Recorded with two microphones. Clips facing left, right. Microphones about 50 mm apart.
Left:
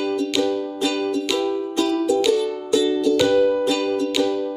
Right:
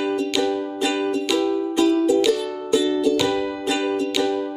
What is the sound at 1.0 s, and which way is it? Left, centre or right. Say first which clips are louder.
Music: right 2 dB; centre.